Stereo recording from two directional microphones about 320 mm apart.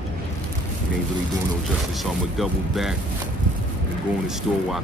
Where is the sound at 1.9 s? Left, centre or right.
Centre.